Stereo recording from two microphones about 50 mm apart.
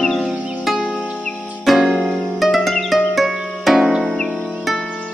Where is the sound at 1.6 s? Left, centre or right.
Centre.